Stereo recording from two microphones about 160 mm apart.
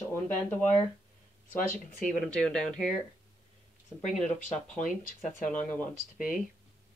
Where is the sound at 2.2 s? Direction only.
5° left (ahead or behind).